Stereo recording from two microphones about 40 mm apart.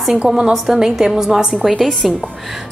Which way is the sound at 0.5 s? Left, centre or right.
Centre.